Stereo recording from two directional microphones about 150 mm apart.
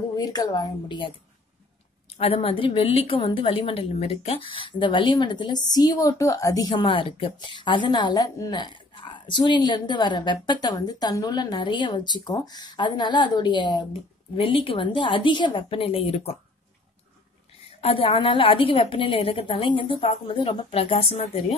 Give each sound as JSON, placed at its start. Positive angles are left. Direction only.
{"t": 0.2, "sound": "speech", "side_deg": 25}
{"t": 2.1, "sound": "a woman's voice", "side_deg": 40}
{"t": 17.8, "sound": "a woman's voice", "side_deg": 35}